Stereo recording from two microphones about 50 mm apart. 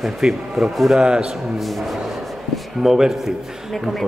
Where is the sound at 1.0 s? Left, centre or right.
Centre.